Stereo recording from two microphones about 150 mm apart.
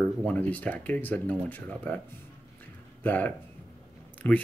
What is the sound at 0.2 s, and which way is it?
Speech, 10° left (ahead or behind).